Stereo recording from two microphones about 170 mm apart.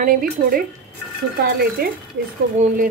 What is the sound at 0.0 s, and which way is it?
Speech, 55° right (ahead or behind).